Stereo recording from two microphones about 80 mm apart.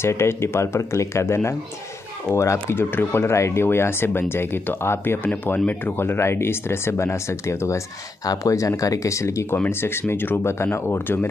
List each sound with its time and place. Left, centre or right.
0.0 s speech: left